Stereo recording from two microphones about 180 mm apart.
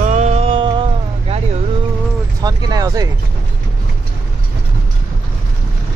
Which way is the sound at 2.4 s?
20° right (ahead or behind).